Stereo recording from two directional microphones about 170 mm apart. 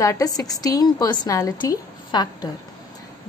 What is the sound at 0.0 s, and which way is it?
A woman's voice, 20° left (ahead or behind).